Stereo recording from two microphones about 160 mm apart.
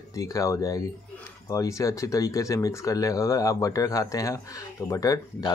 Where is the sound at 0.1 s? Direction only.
20° left (ahead or behind).